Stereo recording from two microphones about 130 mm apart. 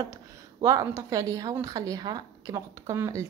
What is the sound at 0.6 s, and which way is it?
A woman's voice, 30° right (ahead or behind).